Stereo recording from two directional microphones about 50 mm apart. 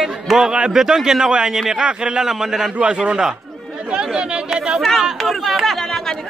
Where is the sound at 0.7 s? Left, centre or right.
Centre.